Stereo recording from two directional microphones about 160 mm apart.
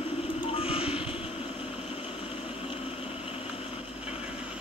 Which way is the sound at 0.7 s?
35° left (ahead or behind).